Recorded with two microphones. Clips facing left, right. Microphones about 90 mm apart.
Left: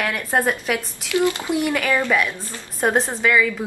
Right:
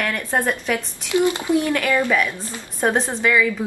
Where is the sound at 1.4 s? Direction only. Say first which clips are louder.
Right 2 dB; 15° left (ahead or behind).